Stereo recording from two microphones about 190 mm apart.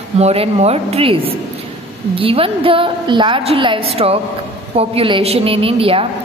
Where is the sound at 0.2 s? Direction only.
35° right (ahead or behind).